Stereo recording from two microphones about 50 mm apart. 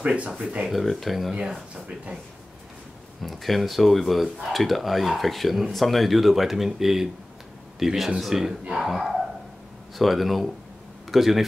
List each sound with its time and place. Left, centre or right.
0.0 s speech: right
0.7 s speech: centre
3.2 s a man's voice: centre